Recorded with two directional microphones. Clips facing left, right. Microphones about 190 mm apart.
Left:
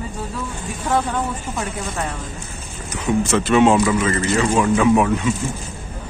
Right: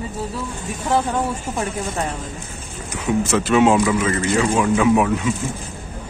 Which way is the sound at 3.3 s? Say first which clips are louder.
Left 1 dB; 5° right (ahead or behind).